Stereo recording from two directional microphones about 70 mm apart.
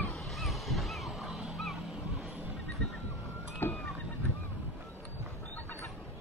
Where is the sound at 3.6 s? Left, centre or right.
Left.